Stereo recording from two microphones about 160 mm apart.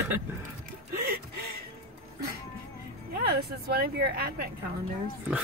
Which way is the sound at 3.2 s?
80° right.